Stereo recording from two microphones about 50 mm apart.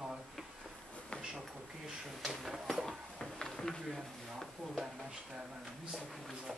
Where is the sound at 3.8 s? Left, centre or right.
Centre.